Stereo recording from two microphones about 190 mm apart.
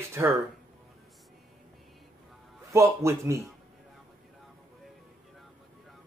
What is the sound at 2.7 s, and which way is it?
Speech, 15° right (ahead or behind).